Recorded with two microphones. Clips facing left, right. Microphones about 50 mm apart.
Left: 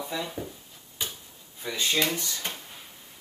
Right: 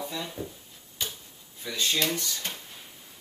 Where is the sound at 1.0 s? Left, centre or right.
Centre.